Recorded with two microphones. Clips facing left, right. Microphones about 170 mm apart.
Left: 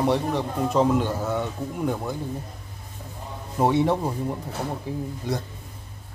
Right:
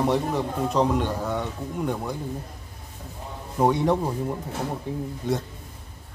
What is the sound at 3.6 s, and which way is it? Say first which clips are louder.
Speech: even; 5° left (ahead or behind).